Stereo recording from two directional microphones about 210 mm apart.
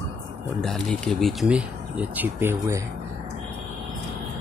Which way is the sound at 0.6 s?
Centre (ahead or behind).